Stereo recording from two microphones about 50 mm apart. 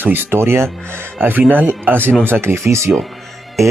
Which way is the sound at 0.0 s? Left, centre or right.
Right.